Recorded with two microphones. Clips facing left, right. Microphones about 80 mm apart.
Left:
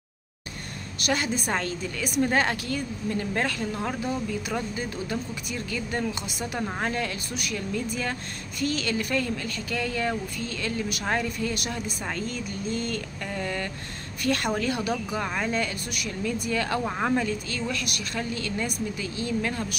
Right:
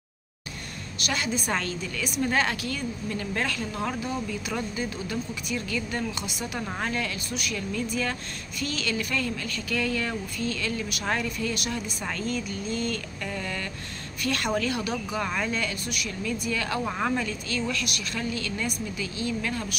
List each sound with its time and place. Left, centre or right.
1.0 s speech: left
16.8 s speech: left